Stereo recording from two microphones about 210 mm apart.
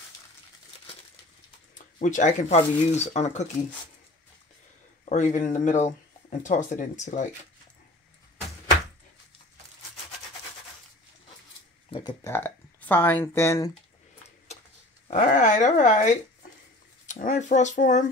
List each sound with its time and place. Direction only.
2.0 s speech: 35° left (ahead or behind)
5.1 s speech: 35° left (ahead or behind)
11.9 s speech: 20° left (ahead or behind)
15.0 s speech: 40° left (ahead or behind)